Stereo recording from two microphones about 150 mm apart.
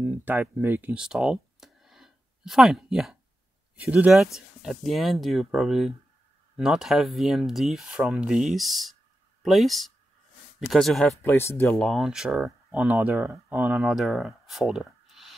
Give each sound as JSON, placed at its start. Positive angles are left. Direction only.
{"t": 0.0, "sound": "speech", "side_deg": -10}
{"t": 11.2, "sound": "speech", "side_deg": 15}
{"t": 11.8, "sound": "speech", "side_deg": 0}